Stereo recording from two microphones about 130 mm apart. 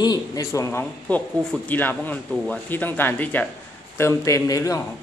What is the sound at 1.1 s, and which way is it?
Speech, 10° left (ahead or behind).